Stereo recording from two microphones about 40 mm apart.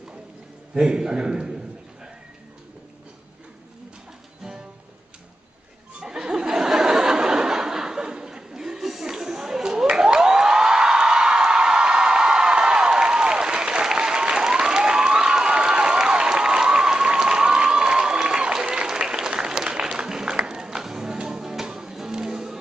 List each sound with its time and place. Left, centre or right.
0.7 s a man's voice: centre
4.4 s music: centre
5.9 s a sound: centre
21.2 s music: centre